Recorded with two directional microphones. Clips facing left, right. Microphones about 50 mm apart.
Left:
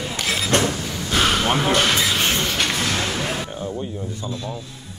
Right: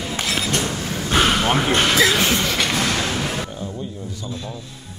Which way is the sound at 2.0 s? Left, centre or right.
Right.